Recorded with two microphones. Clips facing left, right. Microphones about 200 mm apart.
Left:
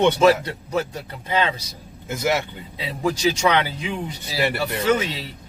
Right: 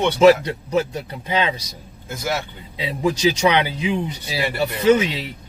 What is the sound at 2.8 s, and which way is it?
Speech, 15° right (ahead or behind).